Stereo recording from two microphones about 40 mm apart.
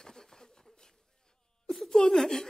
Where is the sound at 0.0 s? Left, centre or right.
Centre.